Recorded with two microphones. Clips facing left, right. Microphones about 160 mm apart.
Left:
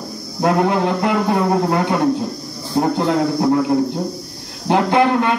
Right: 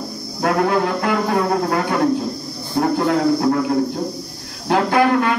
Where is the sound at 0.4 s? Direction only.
20° left (ahead or behind).